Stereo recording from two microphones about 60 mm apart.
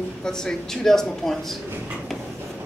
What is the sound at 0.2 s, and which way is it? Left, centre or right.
Speech, centre.